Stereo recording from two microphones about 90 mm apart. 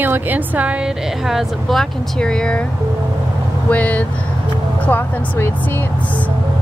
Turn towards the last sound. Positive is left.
turn(degrees=20)  # may be behind; listen again after turning